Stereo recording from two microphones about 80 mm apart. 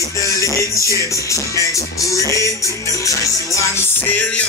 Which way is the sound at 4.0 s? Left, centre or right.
Centre.